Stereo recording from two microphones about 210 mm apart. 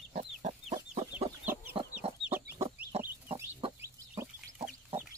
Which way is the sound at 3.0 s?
10° right (ahead or behind).